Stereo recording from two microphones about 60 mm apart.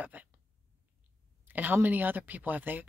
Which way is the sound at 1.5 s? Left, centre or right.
Right.